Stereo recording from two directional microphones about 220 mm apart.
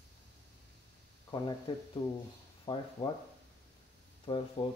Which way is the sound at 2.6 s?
20° left (ahead or behind).